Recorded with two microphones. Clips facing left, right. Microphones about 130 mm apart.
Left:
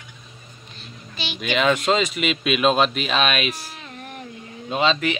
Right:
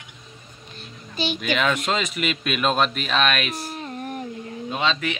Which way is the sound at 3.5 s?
45° right (ahead or behind).